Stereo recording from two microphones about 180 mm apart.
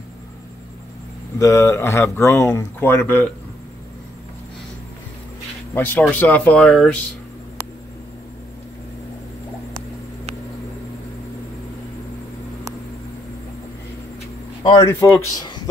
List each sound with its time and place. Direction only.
1.4 s speech: 15° left (ahead or behind)
5.8 s speech: 10° left (ahead or behind)
14.6 s speech: 25° left (ahead or behind)
14.9 s a man's voice: 15° left (ahead or behind)